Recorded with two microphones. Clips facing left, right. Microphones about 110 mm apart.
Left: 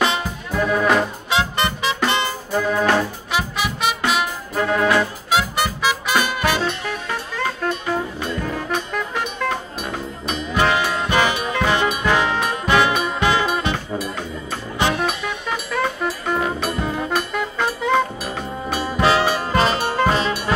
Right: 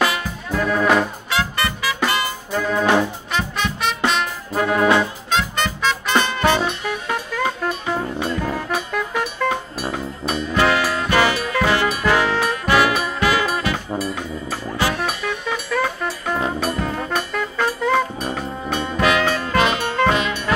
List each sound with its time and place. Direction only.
0.5 s music: 5° left (ahead or behind)
1.3 s music: 20° left (ahead or behind)
2.5 s brass instrument: 5° left (ahead or behind)
3.3 s music: 10° left (ahead or behind)
4.7 s music: 20° right (ahead or behind)
5.3 s music: 10° left (ahead or behind)
6.6 s music: 10° right (ahead or behind)
10.5 s music: 15° left (ahead or behind)
15.0 s music: centre (ahead or behind)
18.7 s brass instrument: 10° left (ahead or behind)
18.9 s brass instrument: 30° left (ahead or behind)
19.4 s music: 35° left (ahead or behind)